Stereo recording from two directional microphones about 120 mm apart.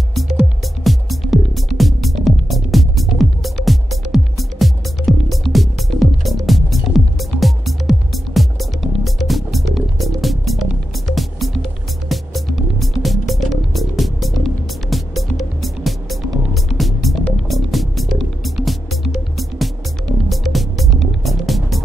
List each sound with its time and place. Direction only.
0.8 s music: centre (ahead or behind)
20.2 s music: centre (ahead or behind)